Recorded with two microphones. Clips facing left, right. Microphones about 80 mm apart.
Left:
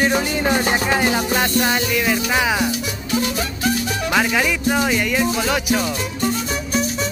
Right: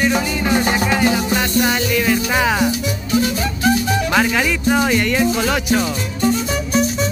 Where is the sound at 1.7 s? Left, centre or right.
Centre.